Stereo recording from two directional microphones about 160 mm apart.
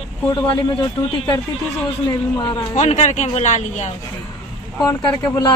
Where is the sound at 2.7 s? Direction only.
50° left (ahead or behind).